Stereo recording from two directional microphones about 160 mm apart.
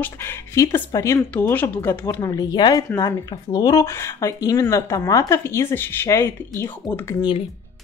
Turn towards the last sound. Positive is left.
turn(degrees=15)  # may be behind; listen again after turning